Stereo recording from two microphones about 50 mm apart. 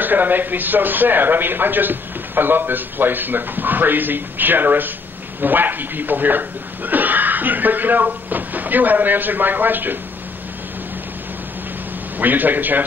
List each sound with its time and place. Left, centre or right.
0.0 s speech: right
12.2 s speech: right